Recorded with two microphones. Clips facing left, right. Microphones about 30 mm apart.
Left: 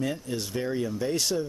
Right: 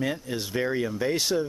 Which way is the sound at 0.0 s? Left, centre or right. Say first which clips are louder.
Right 1 dB; centre.